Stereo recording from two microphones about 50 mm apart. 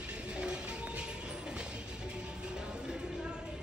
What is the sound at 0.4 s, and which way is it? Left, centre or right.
Train, centre.